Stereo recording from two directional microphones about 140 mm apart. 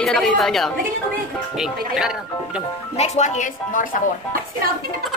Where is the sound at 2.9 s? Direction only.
50° left (ahead or behind); by 4.0 s 65° left (ahead or behind).